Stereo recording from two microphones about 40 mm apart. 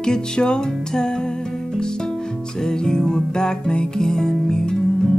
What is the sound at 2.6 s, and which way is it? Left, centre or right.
Music, centre.